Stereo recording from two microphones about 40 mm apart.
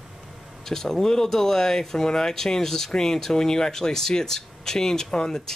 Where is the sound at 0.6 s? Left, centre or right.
Centre.